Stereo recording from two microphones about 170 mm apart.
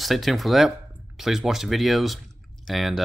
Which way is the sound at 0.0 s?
Centre (ahead or behind).